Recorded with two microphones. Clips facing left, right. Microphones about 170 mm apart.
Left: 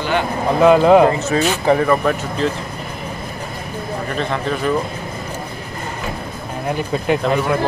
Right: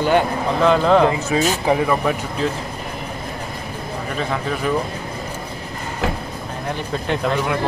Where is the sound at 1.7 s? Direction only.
10° right (ahead or behind).